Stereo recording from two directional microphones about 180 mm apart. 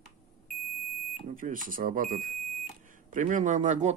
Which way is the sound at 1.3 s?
50° right (ahead or behind).